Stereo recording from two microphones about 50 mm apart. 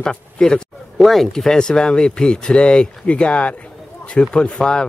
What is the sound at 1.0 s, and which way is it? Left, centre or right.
Speech, centre.